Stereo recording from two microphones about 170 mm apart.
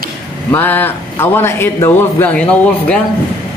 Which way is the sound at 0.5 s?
10° left (ahead or behind).